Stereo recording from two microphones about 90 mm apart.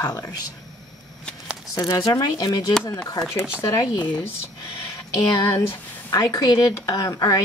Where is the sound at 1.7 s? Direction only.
45° left (ahead or behind).